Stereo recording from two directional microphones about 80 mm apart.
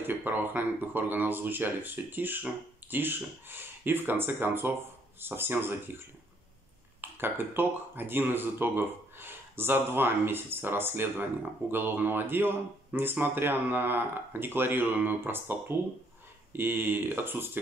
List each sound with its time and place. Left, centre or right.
0.0 s speech: right
16.5 s speech: right